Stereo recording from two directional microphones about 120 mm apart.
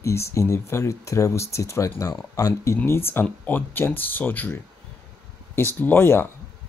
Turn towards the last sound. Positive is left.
turn(degrees=20)  # may be behind; listen again after turning